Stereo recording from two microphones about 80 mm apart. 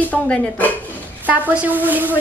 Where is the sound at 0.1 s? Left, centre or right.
Centre.